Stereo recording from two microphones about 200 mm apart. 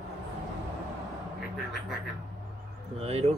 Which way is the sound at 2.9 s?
30° right (ahead or behind).